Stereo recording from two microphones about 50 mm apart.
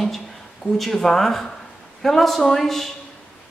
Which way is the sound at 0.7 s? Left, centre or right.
Centre.